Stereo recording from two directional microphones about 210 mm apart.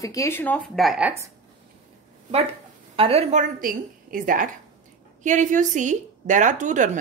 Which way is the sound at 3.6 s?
40° right (ahead or behind).